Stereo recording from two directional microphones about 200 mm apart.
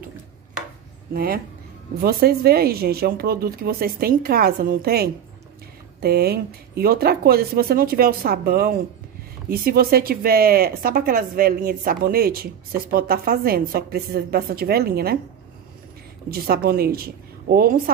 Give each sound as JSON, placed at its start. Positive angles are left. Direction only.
{"t": 1.1, "sound": "speech", "side_deg": -50}
{"t": 16.3, "sound": "speech", "side_deg": -50}